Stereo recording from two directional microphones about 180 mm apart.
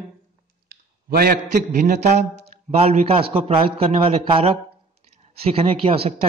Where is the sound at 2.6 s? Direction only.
35° right (ahead or behind).